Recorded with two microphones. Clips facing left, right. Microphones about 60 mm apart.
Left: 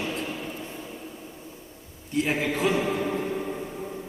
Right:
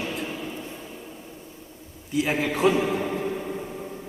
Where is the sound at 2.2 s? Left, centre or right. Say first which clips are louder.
Right 1 dB; centre.